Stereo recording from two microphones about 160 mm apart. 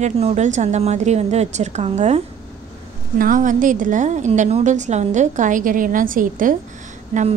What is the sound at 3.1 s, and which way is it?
A woman's voice, 60° right (ahead or behind).